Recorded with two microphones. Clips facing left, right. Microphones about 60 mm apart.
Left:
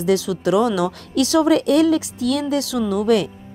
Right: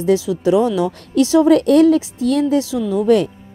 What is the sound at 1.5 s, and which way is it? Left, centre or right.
A woman's voice, right.